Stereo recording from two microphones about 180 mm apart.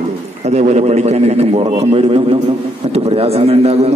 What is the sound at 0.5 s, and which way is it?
A man's voice, 40° right (ahead or behind).